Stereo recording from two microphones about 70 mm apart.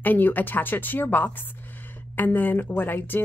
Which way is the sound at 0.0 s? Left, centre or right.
Left.